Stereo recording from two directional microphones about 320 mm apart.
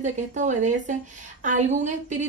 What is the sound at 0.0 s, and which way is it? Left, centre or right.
A woman's voice, right.